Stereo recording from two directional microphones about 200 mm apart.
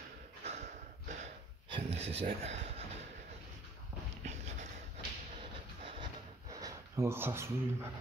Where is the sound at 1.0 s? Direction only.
35° right (ahead or behind).